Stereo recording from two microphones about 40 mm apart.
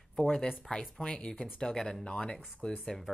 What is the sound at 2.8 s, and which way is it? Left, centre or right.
Speech, centre.